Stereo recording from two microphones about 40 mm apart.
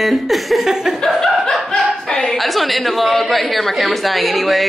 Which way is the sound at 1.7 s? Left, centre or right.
Centre.